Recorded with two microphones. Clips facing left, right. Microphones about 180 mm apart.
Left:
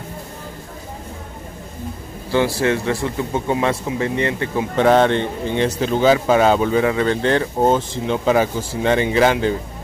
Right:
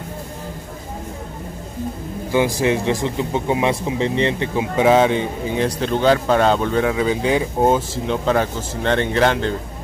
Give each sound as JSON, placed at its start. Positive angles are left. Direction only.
{"t": 2.3, "sound": "speech", "side_deg": -15}
{"t": 4.7, "sound": "speech", "side_deg": -5}
{"t": 8.3, "sound": "speech", "side_deg": 5}